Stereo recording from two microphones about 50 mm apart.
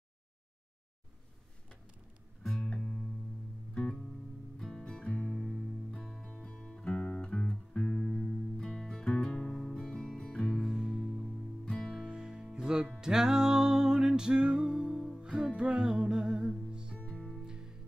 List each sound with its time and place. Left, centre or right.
2.4 s music: centre
2.8 s music: centre
3.7 s music: centre
5.9 s music: centre
6.4 s music: centre
10.6 s music: centre
11.6 s music: centre
11.9 s music: centre
17.0 s music: left
17.4 s music: centre